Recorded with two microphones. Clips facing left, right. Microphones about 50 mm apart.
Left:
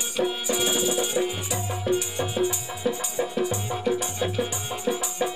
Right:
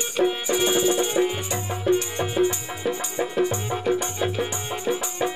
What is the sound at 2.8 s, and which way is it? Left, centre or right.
Music, right.